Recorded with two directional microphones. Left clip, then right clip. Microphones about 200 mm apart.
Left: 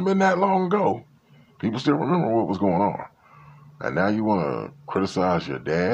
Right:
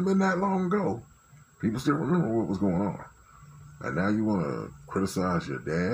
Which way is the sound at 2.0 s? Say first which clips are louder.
Left 6 dB; 10° left (ahead or behind).